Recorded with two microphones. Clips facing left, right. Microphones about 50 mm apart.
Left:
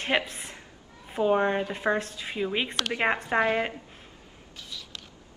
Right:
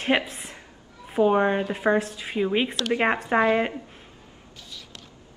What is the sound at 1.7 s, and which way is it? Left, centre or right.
A woman's voice, centre.